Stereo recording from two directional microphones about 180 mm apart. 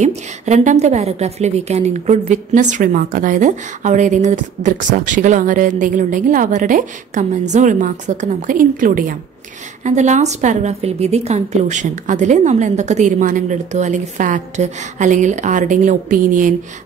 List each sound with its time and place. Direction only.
0.0 s a woman's voice: 40° right (ahead or behind)